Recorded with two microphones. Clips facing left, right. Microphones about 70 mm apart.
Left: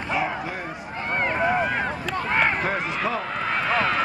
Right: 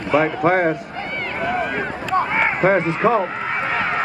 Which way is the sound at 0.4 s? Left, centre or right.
Right.